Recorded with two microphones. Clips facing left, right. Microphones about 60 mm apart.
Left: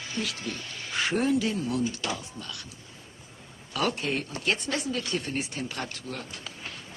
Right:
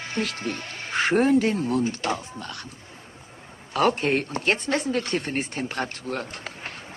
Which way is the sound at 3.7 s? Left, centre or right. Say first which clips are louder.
Right 7 dB; right.